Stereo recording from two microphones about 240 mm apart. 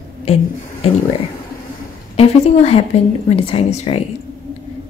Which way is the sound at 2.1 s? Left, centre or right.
Left.